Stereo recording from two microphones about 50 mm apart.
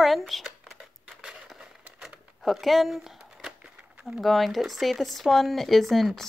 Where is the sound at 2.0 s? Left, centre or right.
Centre.